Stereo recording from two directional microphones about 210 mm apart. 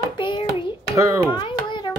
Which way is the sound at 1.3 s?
20° left (ahead or behind).